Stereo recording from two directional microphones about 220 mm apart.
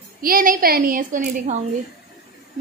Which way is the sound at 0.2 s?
40° right (ahead or behind).